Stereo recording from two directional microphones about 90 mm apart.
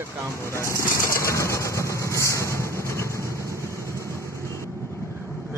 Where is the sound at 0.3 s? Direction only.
30° left (ahead or behind).